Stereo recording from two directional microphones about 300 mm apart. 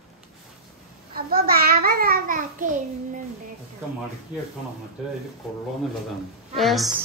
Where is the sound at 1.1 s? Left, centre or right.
Right.